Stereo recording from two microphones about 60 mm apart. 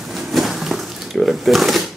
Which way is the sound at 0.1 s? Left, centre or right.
Centre.